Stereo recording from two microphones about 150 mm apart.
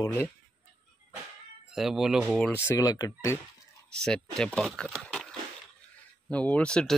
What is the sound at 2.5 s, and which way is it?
Speech, 15° left (ahead or behind).